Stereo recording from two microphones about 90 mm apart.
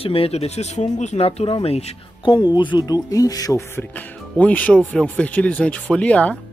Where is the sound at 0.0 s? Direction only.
90° left.